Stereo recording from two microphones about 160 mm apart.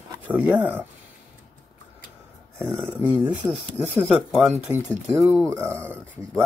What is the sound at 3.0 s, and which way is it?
Speech, 10° right (ahead or behind).